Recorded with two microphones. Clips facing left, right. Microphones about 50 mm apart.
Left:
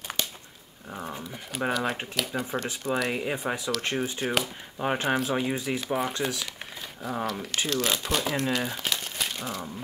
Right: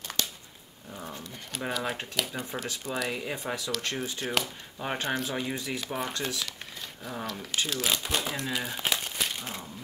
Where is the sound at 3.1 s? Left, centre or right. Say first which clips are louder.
Left 4 dB; left.